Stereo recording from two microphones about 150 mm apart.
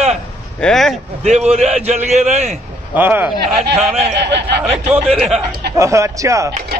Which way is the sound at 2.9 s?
15° right (ahead or behind).